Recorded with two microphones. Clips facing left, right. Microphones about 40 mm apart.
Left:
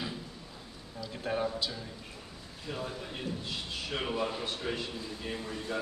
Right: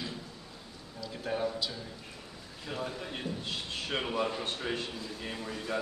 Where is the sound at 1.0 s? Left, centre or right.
Centre.